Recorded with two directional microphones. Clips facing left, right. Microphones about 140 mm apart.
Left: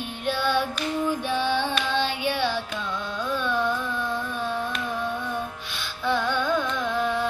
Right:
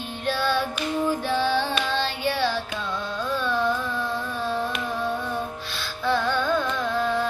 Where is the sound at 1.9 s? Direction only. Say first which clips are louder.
Left 1 dB; 15° left (ahead or behind).